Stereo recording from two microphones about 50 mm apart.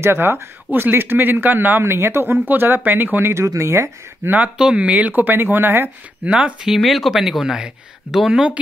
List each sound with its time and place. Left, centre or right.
0.0 s speech: right
1.9 s speech: right
2.4 s speech: right
3.3 s speech: right
4.7 s speech: right
5.1 s speech: right
6.3 s speech: centre
6.8 s speech: centre